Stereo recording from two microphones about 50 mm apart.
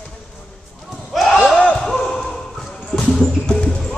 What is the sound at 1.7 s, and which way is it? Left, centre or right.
Basketball bounce, centre.